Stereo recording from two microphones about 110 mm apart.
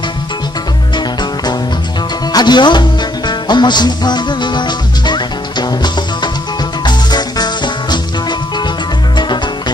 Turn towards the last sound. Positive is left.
turn(degrees=40)  # may be behind; listen again after turning